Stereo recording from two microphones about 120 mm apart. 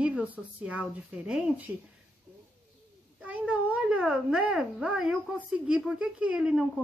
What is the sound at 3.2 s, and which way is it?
A woman's voice, 10° right (ahead or behind).